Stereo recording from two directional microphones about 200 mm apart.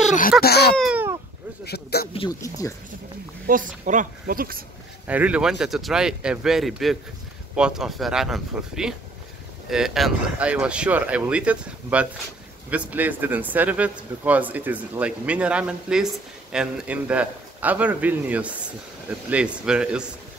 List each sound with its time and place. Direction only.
0.4 s speech: 50° left (ahead or behind)
0.7 s babbling: 5° right (ahead or behind)
1.6 s speech: 55° left (ahead or behind)
2.1 s speech: 20° left (ahead or behind)
3.4 s speech: 40° right (ahead or behind)
5.0 s a man's voice: 5° right (ahead or behind)